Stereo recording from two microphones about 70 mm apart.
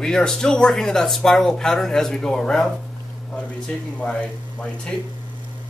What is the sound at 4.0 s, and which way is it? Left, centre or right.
Speech, centre.